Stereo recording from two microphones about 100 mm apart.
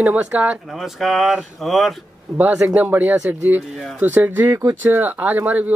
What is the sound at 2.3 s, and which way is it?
Speech, 20° right (ahead or behind).